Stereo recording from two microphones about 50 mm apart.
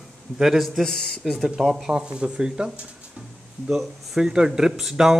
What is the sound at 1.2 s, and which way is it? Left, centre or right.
Speech, centre.